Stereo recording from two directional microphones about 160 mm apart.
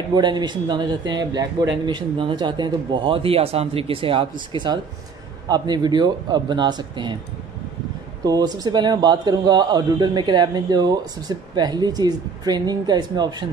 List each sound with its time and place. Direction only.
0.1 s a man's voice: 25° right (ahead or behind)
5.5 s a man's voice: 25° right (ahead or behind)
8.3 s a man's voice: 25° right (ahead or behind)